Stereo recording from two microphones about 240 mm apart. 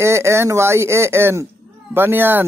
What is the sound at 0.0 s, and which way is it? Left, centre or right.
Speech, centre.